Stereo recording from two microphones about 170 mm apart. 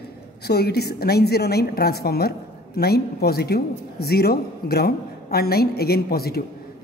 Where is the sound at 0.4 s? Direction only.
70° left (ahead or behind).